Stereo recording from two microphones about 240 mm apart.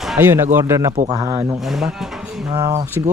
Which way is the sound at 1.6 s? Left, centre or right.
Centre.